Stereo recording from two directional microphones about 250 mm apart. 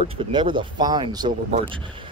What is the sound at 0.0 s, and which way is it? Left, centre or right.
Speech, right.